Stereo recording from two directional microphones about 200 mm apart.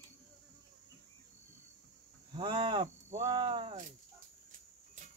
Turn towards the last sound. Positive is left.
turn(degrees=-25)  # may be behind; listen again after turning